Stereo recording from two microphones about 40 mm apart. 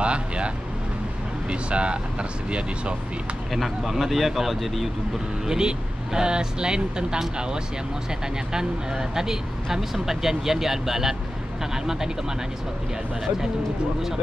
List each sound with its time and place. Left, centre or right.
0.0 s speech: right
1.5 s speech: right
3.5 s speech: centre
5.5 s speech: centre